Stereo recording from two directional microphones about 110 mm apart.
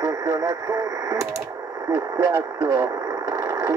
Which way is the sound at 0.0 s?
35° right (ahead or behind).